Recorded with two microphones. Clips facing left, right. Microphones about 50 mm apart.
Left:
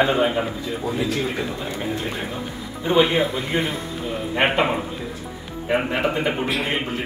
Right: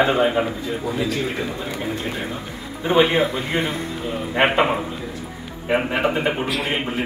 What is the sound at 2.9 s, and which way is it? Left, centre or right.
Speech, right.